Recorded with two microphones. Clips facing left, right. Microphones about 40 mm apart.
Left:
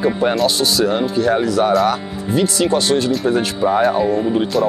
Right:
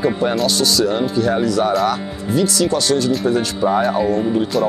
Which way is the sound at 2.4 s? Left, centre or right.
Left.